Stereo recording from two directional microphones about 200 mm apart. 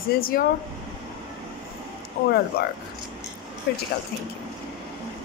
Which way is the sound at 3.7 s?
55° left (ahead or behind).